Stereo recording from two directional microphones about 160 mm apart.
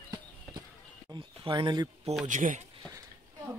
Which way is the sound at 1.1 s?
30° right (ahead or behind).